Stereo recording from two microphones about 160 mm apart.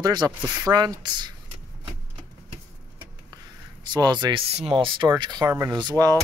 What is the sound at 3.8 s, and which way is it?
Speech, 25° right (ahead or behind).